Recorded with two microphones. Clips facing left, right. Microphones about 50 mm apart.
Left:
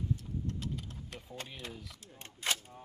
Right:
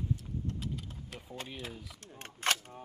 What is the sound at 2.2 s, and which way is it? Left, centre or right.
Speech, right.